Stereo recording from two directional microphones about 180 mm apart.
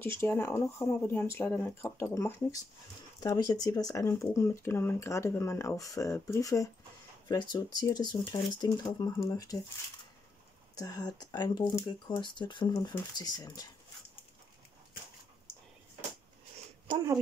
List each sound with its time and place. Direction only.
0.0 s speech: 10° left (ahead or behind)
10.7 s speech: 20° left (ahead or behind)
16.9 s speech: 20° right (ahead or behind)